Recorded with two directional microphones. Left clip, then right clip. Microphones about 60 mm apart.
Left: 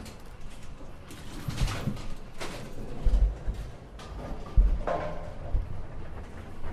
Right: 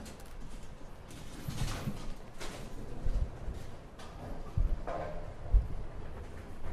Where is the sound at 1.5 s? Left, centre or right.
Left.